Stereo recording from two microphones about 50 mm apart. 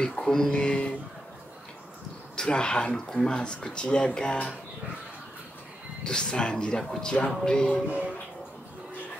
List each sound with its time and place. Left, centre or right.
0.2 s speech: centre
2.3 s speech: centre
6.0 s speech: centre